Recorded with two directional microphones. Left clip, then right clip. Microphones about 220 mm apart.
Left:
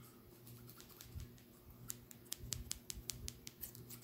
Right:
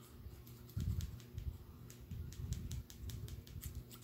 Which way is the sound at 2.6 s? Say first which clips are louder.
Left 7 dB; 20° left (ahead or behind).